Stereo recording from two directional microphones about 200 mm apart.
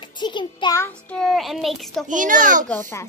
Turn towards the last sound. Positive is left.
turn(degrees=10)  # may be behind; listen again after turning